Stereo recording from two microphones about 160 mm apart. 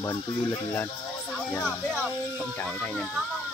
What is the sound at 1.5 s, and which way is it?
Speech, 5° left (ahead or behind).